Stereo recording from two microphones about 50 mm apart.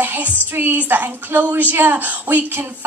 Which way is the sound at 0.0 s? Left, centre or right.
Right.